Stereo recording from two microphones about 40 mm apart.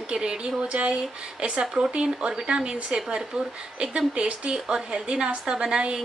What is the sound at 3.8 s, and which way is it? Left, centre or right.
Speech, right.